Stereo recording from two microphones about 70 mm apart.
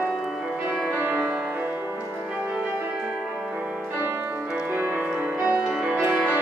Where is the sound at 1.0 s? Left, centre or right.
Right.